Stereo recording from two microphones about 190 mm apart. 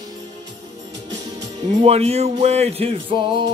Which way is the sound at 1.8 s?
35° right (ahead or behind).